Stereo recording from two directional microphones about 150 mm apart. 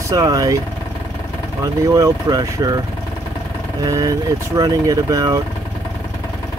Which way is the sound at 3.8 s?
25° right (ahead or behind).